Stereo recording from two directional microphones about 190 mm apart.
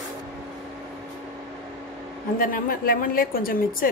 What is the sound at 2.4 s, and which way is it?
A woman's voice, 50° left (ahead or behind).